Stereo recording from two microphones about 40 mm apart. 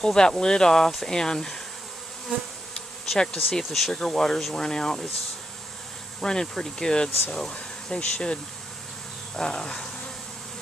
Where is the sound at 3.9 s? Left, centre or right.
Centre.